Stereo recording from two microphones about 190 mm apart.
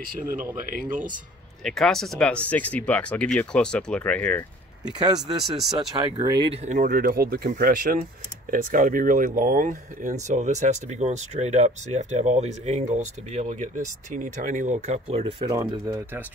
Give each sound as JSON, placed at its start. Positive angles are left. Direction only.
{"t": 0.7, "sound": "speech", "side_deg": -45}
{"t": 1.6, "sound": "speech", "side_deg": 0}
{"t": 4.9, "sound": "speech", "side_deg": -20}